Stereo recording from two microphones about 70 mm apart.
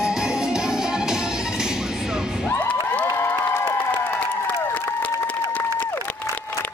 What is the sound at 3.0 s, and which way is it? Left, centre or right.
Cheering, left.